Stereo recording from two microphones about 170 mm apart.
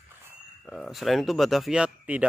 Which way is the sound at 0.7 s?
Centre (ahead or behind).